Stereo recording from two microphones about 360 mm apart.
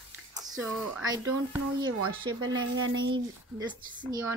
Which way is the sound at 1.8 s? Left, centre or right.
Right.